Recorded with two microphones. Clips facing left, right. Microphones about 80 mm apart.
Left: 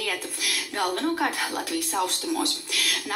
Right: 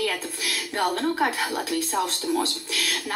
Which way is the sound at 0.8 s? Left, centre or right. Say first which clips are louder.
Right 2 dB; right.